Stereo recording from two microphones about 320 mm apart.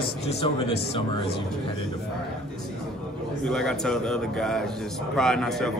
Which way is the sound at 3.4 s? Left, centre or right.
Centre.